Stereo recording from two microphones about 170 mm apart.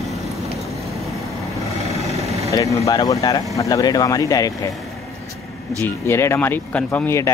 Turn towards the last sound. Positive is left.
turn(degrees=10)  # may be behind; listen again after turning